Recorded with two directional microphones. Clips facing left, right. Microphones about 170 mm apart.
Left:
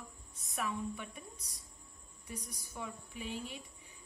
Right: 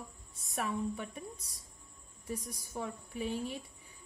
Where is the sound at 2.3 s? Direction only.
45° right (ahead or behind).